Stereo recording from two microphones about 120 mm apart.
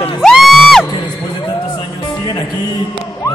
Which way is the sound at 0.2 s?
Centre (ahead or behind).